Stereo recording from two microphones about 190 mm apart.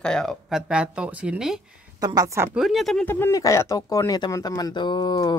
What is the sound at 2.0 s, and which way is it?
Speech, 20° right (ahead or behind).